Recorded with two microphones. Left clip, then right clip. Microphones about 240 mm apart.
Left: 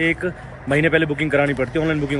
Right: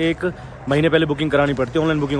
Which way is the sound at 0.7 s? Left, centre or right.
Centre.